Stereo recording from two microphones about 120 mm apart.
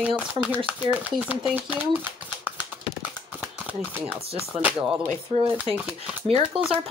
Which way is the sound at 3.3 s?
10° right (ahead or behind).